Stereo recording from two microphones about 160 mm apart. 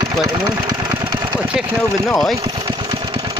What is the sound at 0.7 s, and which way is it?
Engine, 25° right (ahead or behind).